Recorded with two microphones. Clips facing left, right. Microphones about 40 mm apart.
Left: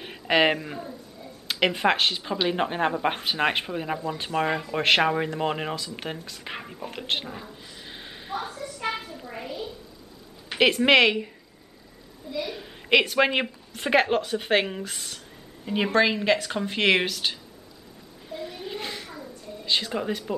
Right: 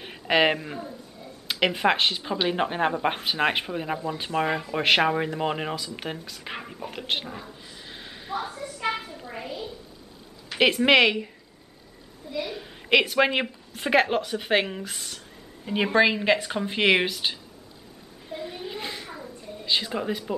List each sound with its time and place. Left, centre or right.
0.0 s speech: centre
8.5 s a sound: centre
10.6 s speech: centre
12.3 s speech: centre
12.5 s a child's voice: centre
18.6 s a sound: centre
19.6 s speech: centre